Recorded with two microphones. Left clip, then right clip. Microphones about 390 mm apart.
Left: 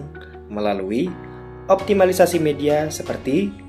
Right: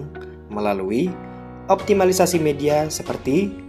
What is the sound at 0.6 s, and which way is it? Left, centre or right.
Speech, centre.